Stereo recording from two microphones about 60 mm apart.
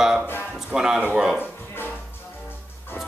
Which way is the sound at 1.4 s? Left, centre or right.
Left.